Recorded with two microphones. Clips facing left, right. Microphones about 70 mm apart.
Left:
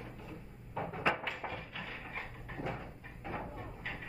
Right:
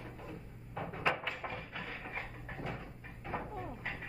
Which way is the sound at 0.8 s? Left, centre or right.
Centre.